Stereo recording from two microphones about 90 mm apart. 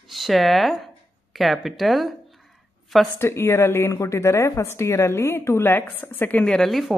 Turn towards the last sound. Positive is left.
turn(degrees=0)  # may be behind; listen again after turning